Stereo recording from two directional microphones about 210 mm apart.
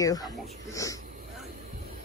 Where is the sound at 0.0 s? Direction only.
15° left (ahead or behind).